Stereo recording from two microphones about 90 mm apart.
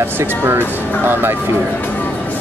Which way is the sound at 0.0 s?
25° right (ahead or behind).